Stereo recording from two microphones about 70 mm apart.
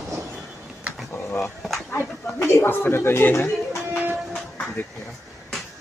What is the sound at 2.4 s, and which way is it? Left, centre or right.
Speech, left.